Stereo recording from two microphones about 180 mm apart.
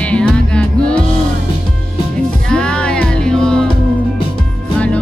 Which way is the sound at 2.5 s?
5° left (ahead or behind).